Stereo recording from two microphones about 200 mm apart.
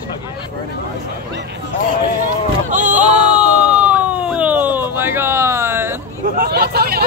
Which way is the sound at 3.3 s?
5° right (ahead or behind).